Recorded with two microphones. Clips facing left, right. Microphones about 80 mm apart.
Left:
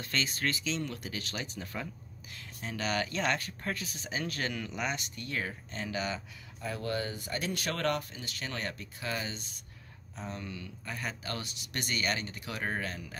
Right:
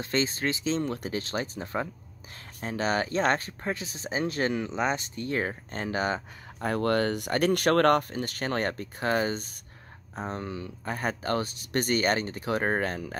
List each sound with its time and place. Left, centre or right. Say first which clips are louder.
0.0 s speech: right 6 dB; right
6.6 s speech: right 9 dB; right